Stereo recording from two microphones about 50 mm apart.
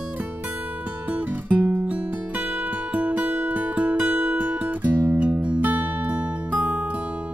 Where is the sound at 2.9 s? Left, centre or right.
Right.